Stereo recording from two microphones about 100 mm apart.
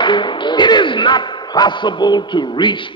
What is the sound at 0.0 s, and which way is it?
A man's voice, 50° left (ahead or behind).